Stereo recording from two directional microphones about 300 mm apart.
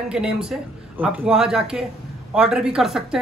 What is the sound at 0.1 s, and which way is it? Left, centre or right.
Speech, centre.